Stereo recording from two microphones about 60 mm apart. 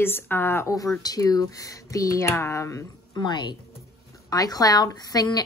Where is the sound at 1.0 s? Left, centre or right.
Left.